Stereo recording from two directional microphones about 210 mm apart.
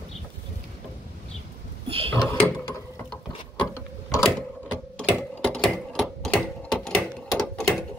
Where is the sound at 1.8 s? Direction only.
25° right (ahead or behind).